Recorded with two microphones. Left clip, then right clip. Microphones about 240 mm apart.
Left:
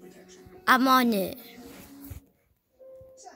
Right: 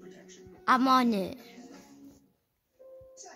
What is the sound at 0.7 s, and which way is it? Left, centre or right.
Speech, centre.